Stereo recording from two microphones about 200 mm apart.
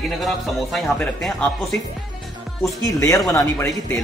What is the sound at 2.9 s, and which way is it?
A man's voice, 15° left (ahead or behind).